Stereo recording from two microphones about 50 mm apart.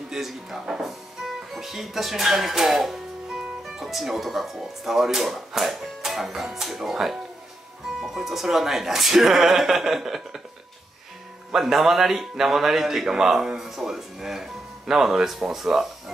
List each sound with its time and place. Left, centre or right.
0.1 s a man's voice: centre
11.5 s a man's voice: centre